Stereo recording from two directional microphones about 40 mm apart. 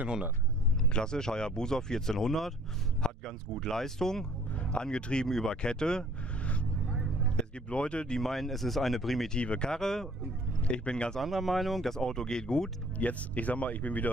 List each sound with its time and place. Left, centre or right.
0.9 s speech: centre
3.0 s speech: centre
4.6 s speech: left
5.6 s speech: left
7.3 s speech: left
8.2 s speech: centre
9.3 s speech: left
9.7 s speech: centre
10.6 s speech: left
11.1 s speech: centre
12.0 s speech: centre
13.0 s speech: left